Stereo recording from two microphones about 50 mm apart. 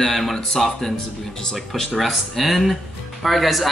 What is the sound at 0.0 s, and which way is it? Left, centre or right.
Speech, centre.